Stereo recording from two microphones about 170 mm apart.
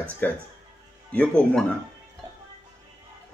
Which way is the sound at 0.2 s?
10° left (ahead or behind).